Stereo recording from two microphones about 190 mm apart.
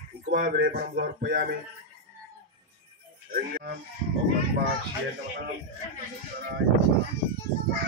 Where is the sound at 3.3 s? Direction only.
50° right (ahead or behind).